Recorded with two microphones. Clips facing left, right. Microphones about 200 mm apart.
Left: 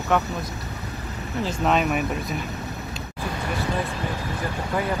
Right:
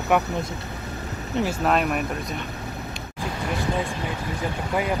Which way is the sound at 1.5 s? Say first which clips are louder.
Left 2 dB; centre (ahead or behind).